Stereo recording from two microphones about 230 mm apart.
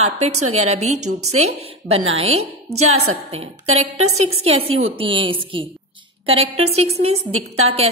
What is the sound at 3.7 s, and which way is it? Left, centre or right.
A woman's voice, right.